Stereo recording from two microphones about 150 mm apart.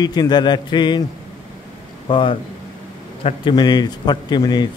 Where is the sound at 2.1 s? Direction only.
35° left (ahead or behind).